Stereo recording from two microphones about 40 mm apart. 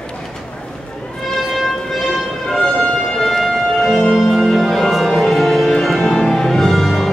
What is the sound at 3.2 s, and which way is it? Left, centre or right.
Music, centre.